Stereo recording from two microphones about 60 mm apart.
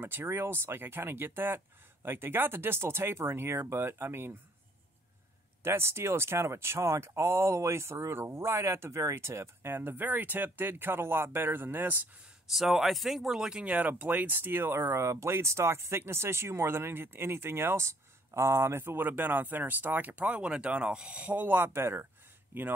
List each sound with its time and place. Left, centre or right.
0.0 s speech: right
5.6 s speech: right
12.4 s speech: centre
13.7 s speech: right